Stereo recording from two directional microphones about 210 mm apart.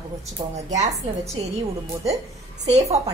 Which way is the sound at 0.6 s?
35° right (ahead or behind).